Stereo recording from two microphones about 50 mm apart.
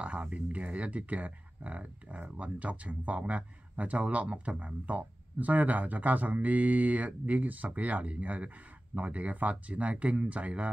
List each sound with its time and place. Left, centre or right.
0.0 s speech: right